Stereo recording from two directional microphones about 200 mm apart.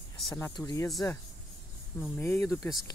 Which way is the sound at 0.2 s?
Centre (ahead or behind).